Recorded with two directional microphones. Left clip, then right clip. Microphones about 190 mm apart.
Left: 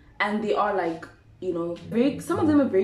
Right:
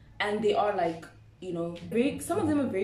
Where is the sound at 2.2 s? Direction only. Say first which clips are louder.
Left 6 dB; 15° right (ahead or behind).